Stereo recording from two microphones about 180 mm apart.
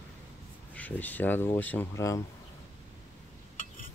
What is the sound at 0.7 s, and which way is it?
Speech, 10° left (ahead or behind).